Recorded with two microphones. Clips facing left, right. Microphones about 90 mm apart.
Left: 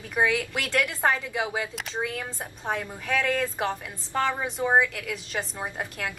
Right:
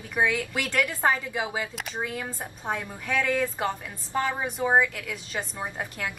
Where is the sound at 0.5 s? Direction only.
5° right (ahead or behind).